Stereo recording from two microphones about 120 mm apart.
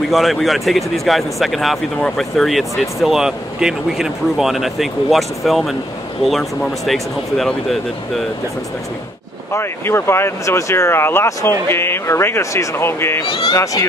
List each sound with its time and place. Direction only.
0.1 s speech: centre (ahead or behind)
9.5 s speech: 20° left (ahead or behind)